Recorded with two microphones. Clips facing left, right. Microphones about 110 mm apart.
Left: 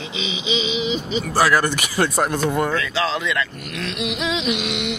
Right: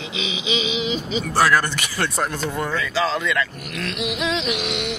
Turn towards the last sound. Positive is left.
turn(degrees=0)  # may be behind; listen again after turning